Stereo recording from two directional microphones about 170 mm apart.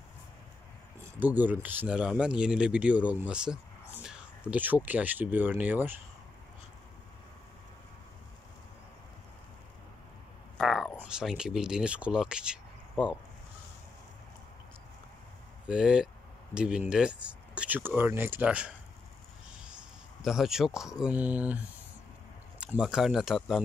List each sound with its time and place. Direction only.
1.2 s speech: 10° right (ahead or behind)
10.6 s speech: centre (ahead or behind)
15.7 s speech: 5° right (ahead or behind)
19.5 s a sound: 5° right (ahead or behind)
21.0 s speech: 10° right (ahead or behind)